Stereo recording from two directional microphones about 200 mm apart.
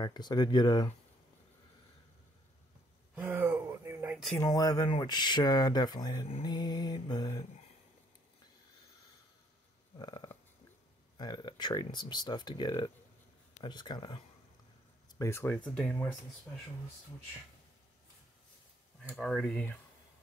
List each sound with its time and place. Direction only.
0.0 s speech: 20° left (ahead or behind)
3.2 s a sound: 10° right (ahead or behind)
4.4 s speech: 20° left (ahead or behind)
9.9 s a sound: 20° left (ahead or behind)
11.1 s speech: 20° left (ahead or behind)
15.1 s speech: 15° left (ahead or behind)
19.0 s speech: centre (ahead or behind)